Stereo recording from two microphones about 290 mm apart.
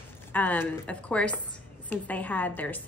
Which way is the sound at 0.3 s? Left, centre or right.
Centre.